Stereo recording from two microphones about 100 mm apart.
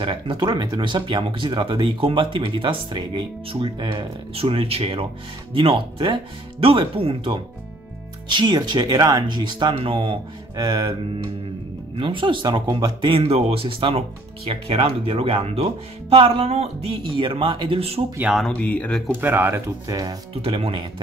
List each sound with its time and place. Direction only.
0.0 s speech: 55° right (ahead or behind); by 5.0 s 75° right (ahead or behind)
5.5 s speech: 60° right (ahead or behind)
8.3 s speech: 50° right (ahead or behind)
10.5 s speech: 45° right (ahead or behind)
11.9 s speech: 55° right (ahead or behind)
13.2 s speech: 75° right (ahead or behind)
14.5 s speech: 70° right (ahead or behind)
18.4 s speech: 10° left (ahead or behind)
19.2 s speech: 20° right (ahead or behind)
19.9 s speech: 40° right (ahead or behind)
20.4 s speech: 65° right (ahead or behind)